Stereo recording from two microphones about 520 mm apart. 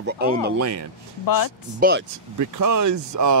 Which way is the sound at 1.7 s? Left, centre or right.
Centre.